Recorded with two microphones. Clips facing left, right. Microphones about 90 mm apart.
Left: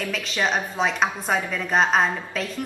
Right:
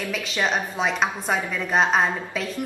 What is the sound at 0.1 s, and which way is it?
A woman's voice, 5° right (ahead or behind).